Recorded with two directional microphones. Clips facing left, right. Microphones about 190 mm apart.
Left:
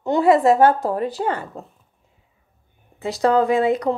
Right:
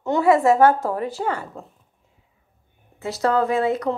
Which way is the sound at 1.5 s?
20° left (ahead or behind).